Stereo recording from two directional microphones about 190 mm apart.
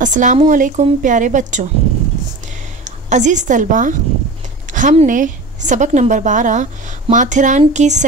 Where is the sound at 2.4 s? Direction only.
40° right (ahead or behind).